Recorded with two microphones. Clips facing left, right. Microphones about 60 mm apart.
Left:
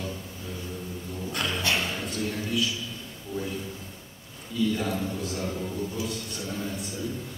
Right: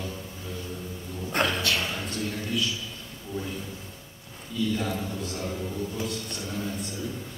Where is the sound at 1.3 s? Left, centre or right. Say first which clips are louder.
Right 5 dB; right.